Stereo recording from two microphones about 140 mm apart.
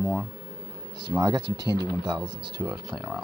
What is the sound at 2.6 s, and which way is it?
Speech, 15° right (ahead or behind).